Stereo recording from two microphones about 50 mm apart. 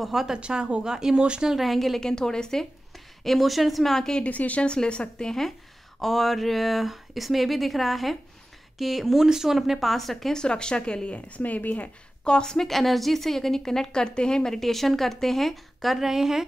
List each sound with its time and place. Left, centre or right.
0.0 s a woman's voice: centre
0.4 s speech: centre
1.5 s a woman's voice: centre
2.0 s a woman's voice: centre
3.3 s a woman's voice: centre
4.2 s a woman's voice: left
5.9 s a woman's voice: centre
10.3 s a woman's voice: centre; by 11.9 s left
12.3 s a woman's voice: centre